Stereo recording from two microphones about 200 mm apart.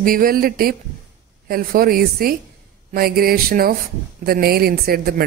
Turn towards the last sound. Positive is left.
turn(degrees=-50)  # may be behind; listen again after turning